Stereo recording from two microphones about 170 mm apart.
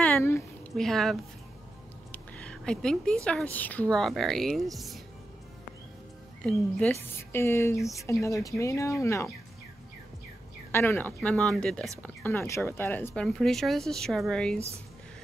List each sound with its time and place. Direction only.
0.0 s a sound: 10° left (ahead or behind)
0.7 s speech: centre (ahead or behind)
2.1 s a sound: 5° left (ahead or behind)
3.3 s speech: 10° left (ahead or behind)
6.4 s speech: 5° left (ahead or behind)
10.7 s speech: 10° left (ahead or behind)
12.0 s speech: 15° left (ahead or behind)